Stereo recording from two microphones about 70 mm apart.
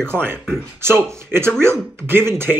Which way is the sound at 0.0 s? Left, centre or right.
Right.